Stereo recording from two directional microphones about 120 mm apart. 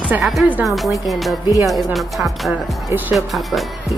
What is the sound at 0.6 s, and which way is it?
Speech, centre (ahead or behind).